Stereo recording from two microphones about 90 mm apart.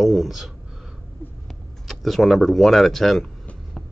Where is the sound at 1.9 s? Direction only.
Centre (ahead or behind).